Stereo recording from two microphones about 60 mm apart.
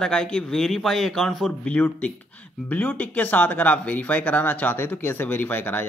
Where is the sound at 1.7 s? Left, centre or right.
Left.